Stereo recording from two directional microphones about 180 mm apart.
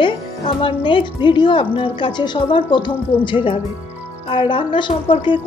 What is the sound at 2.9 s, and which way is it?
Speech, 10° left (ahead or behind).